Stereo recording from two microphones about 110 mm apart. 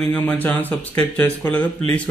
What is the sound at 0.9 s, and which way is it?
Speech, 15° left (ahead or behind).